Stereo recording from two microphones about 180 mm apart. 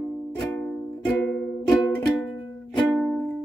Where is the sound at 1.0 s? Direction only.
5° left (ahead or behind).